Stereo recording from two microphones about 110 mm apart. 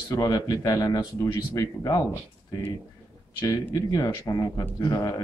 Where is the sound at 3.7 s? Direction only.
35° left (ahead or behind).